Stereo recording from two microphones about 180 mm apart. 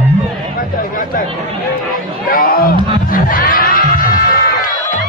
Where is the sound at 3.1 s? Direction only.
50° left (ahead or behind).